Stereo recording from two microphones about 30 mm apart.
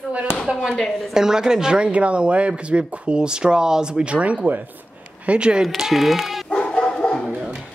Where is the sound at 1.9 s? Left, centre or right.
Right.